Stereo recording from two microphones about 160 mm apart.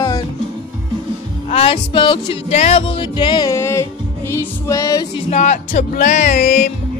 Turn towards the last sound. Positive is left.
turn(degrees=55)  # may be behind; listen again after turning